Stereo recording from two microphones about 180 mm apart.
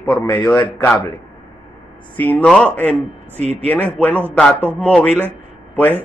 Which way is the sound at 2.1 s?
10° left (ahead or behind).